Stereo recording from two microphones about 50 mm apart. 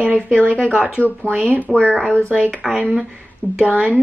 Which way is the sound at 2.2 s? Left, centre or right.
Right.